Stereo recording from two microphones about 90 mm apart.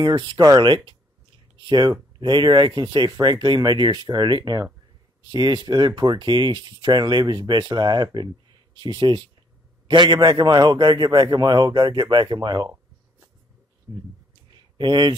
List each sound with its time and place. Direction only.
0.0 s speech: 65° right (ahead or behind)
0.4 s speech: 50° right (ahead or behind)
13.9 s speech: 45° right (ahead or behind)
14.5 s a sound: 60° right (ahead or behind)